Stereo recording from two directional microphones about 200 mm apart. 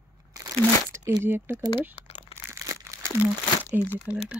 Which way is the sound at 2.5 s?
15° right (ahead or behind).